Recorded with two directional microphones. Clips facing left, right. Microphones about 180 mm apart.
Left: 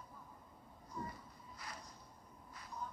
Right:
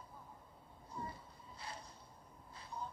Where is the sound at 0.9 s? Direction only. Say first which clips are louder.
Even; 30° right (ahead or behind).